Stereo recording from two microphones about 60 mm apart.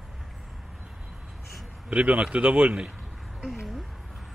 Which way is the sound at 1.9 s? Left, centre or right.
Right.